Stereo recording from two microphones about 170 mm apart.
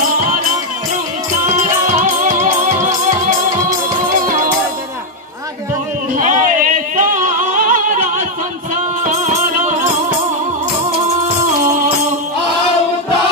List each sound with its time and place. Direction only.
1.6 s music: 45° right (ahead or behind)
6.1 s yodeling: 50° right (ahead or behind)